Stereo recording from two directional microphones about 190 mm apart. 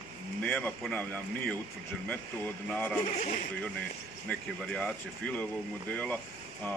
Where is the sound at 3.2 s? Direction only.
45° left (ahead or behind).